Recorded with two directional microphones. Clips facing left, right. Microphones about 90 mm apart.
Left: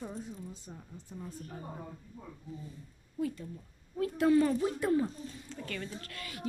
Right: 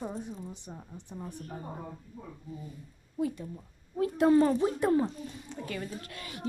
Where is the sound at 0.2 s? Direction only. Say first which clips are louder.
Right 3 dB; 25° right (ahead or behind).